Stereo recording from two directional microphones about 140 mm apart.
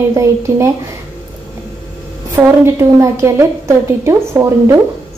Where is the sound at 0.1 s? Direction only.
20° right (ahead or behind).